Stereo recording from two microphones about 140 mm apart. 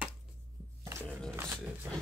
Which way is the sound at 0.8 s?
15° right (ahead or behind).